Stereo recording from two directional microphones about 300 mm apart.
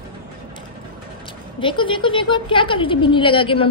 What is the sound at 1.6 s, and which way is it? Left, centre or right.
A woman's voice, centre.